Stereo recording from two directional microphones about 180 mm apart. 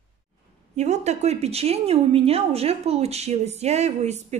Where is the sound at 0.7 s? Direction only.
40° right (ahead or behind).